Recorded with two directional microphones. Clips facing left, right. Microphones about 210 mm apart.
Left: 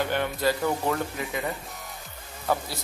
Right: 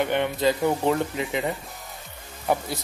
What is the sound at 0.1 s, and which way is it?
Speech, 20° right (ahead or behind).